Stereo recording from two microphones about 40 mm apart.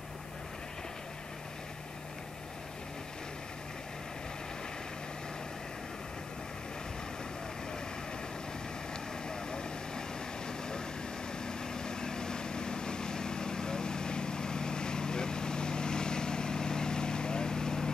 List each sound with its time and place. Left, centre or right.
9.3 s vehicle: centre